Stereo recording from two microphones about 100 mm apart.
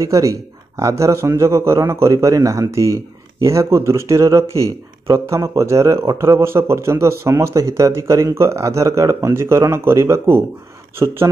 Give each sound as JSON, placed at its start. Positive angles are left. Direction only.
{"t": 0.0, "sound": "speech", "side_deg": -30}
{"t": 11.0, "sound": "speech", "side_deg": -40}